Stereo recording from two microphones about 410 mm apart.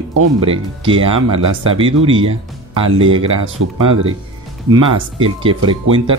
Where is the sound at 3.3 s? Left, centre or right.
Right.